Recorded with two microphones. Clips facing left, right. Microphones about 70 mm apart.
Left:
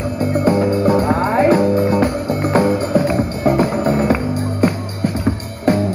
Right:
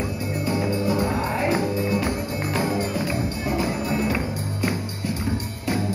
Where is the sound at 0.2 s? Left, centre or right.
Left.